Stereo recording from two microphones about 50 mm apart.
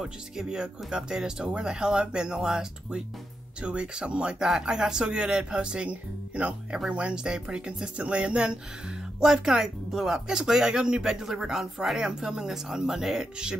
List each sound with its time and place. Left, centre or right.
0.0 s speech: centre